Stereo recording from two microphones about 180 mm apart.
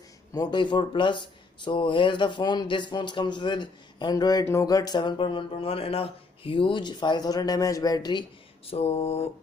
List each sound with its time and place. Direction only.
0.3 s speech: 25° left (ahead or behind)